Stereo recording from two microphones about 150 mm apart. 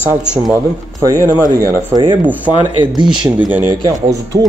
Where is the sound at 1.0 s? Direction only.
20° right (ahead or behind).